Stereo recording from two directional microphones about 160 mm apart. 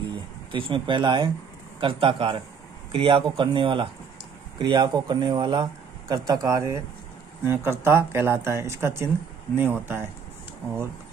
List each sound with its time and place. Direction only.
0.5 s speech: 30° right (ahead or behind); by 10.0 s 15° right (ahead or behind)